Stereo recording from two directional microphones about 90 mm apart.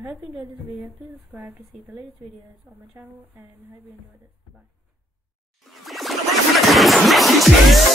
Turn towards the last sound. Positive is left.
turn(degrees=0)  # may be behind; listen again after turning